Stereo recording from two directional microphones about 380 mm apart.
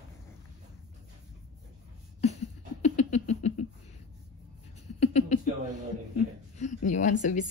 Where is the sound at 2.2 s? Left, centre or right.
Centre.